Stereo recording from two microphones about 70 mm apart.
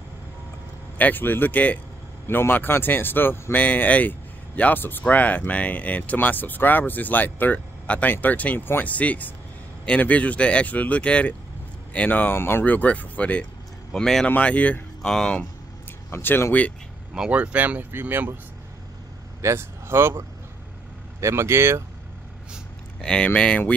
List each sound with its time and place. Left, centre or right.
0.9 s speech: left
13.9 s speech: centre
14.2 s speech: centre
15.0 s speech: centre
16.1 s speech: left
17.3 s speech: centre
19.4 s speech: right
22.9 s speech: centre